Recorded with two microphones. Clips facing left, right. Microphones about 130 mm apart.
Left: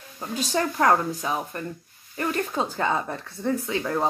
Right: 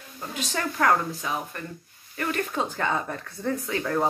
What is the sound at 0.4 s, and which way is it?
Speech, 30° left (ahead or behind).